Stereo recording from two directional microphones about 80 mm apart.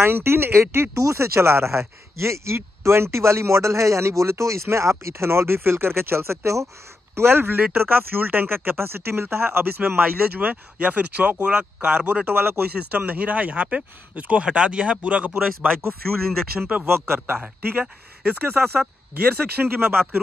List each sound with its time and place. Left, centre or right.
0.0 s speech: right
7.2 s speech: right
12.3 s speech: right